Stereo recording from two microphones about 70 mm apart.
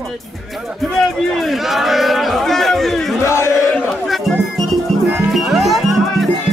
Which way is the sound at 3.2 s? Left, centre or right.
Left.